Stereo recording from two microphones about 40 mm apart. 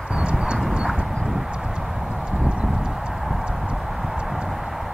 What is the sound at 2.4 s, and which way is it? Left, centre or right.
Clip-clop, right.